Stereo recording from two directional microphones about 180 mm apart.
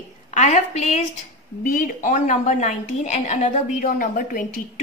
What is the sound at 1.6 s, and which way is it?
A woman's voice, 50° left (ahead or behind).